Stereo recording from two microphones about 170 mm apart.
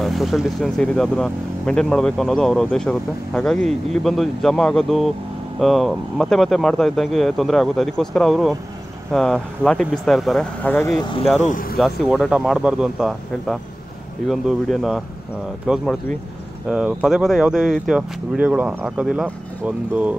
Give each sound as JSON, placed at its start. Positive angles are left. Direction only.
{"t": 0.0, "sound": "speech", "side_deg": 0}
{"t": 11.0, "sound": "speech", "side_deg": 30}
{"t": 11.4, "sound": "speech", "side_deg": 50}
{"t": 11.8, "sound": "speech", "side_deg": 0}